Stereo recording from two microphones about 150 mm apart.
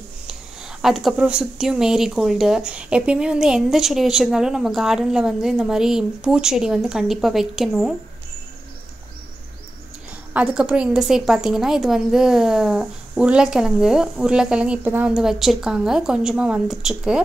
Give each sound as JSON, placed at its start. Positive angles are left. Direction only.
{"t": 0.3, "sound": "speech", "side_deg": -5}
{"t": 10.3, "sound": "speech", "side_deg": -5}